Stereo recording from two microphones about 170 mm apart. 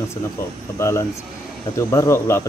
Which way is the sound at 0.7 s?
15° left (ahead or behind).